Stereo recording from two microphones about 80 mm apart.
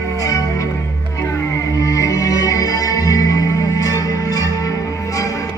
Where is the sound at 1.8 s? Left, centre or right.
Left.